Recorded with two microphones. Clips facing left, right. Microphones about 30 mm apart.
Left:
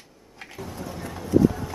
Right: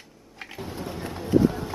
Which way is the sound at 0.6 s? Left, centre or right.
Right.